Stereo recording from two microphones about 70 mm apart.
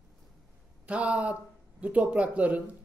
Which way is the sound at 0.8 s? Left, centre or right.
Centre.